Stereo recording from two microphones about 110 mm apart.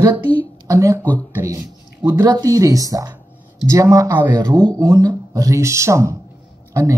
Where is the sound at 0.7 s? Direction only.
30° right (ahead or behind).